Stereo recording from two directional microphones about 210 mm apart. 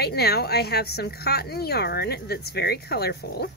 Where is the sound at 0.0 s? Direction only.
50° left (ahead or behind).